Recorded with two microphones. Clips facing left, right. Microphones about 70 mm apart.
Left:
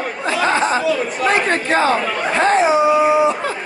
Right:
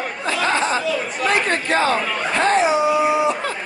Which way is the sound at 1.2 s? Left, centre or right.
Left.